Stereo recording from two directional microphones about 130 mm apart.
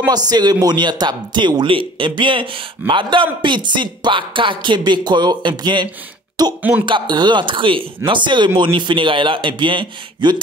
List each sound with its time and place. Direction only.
0.1 s a man's voice: 30° right (ahead or behind)